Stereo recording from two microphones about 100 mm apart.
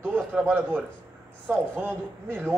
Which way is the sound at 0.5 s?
20° right (ahead or behind).